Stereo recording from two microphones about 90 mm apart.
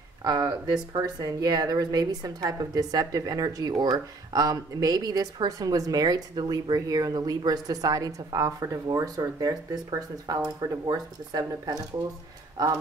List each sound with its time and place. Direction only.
0.2 s a woman's voice: 45° right (ahead or behind)